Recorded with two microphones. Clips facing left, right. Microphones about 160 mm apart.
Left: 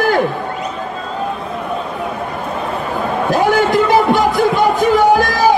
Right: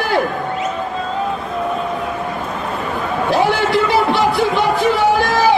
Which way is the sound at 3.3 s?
45° left (ahead or behind).